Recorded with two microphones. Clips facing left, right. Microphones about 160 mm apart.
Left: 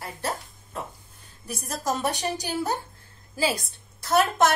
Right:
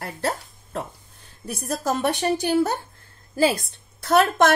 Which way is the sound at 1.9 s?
60° right (ahead or behind).